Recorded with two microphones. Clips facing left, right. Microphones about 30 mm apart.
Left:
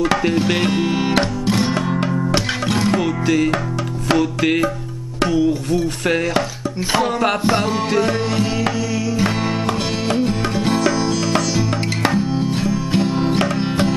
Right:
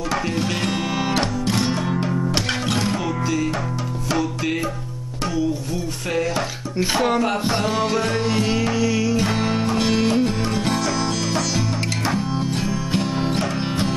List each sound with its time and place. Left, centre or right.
0.7 s music: centre
2.9 s music: left
4.1 s music: left
5.2 s speech: left
7.4 s music: centre
9.2 s music: centre